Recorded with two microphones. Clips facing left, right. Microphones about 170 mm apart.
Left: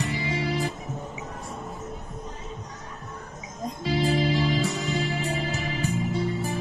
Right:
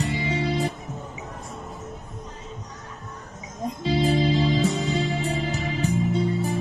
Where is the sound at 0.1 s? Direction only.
20° right (ahead or behind).